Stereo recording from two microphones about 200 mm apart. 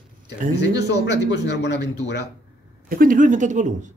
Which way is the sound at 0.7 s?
60° left (ahead or behind).